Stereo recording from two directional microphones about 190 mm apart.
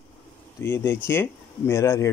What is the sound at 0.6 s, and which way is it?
Speech, 10° left (ahead or behind).